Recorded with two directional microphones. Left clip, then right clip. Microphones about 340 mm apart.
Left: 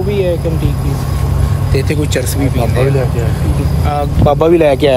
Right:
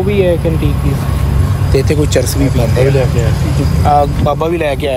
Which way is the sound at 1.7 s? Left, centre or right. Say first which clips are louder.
Right 4 dB; centre.